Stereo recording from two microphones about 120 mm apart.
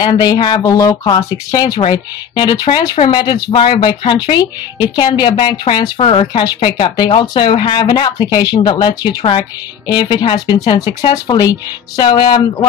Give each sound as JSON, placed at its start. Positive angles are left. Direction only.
{"t": 0.0, "sound": "speech", "side_deg": 35}
{"t": 5.9, "sound": "speech", "side_deg": 45}